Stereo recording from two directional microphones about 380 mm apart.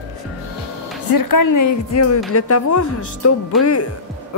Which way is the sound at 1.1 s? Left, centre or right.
Left.